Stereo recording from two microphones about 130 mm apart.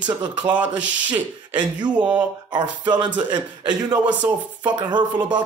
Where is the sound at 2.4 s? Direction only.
35° right (ahead or behind).